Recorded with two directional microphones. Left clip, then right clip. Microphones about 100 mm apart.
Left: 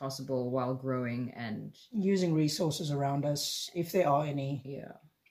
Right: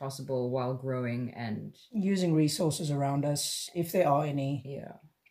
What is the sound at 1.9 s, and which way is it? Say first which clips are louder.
Speech: right 1 dB; 30° right (ahead or behind).